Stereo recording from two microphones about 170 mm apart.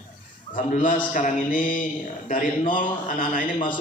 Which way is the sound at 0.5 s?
50° left (ahead or behind).